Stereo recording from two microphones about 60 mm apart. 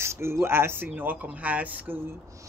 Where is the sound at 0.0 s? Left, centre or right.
Right.